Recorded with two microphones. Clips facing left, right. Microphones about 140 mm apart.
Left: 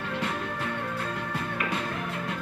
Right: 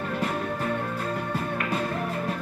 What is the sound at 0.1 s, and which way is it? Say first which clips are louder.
Music: right 2 dB; 40° right (ahead or behind).